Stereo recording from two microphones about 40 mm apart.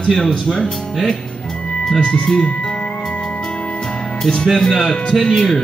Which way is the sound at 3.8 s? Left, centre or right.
Centre.